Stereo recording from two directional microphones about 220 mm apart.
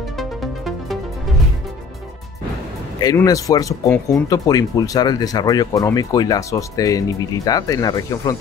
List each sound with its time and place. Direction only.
0.2 s music: centre (ahead or behind)
3.0 s speech: 15° left (ahead or behind)